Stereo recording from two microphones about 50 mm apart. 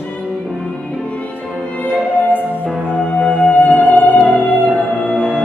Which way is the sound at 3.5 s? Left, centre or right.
Left.